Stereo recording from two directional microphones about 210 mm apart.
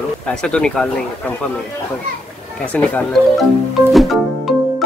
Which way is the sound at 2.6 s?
5° left (ahead or behind).